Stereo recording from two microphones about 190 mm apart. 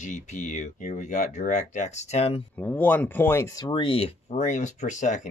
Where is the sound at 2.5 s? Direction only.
10° left (ahead or behind); by 5.3 s 40° left (ahead or behind).